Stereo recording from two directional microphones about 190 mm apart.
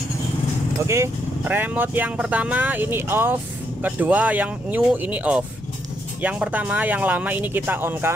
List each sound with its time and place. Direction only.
0.8 s speech: 15° right (ahead or behind)